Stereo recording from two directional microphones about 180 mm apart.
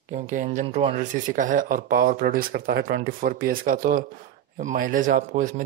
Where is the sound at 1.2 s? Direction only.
45° right (ahead or behind).